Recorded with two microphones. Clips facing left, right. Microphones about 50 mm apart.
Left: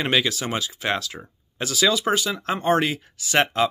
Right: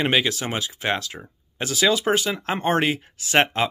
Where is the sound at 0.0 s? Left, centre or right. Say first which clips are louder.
Right 1 dB; centre.